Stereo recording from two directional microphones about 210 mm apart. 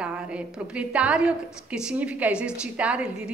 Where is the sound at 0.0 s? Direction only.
5° right (ahead or behind).